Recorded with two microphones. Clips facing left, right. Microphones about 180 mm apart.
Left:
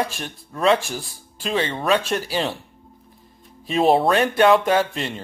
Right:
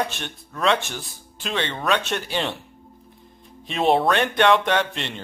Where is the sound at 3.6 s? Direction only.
Centre (ahead or behind).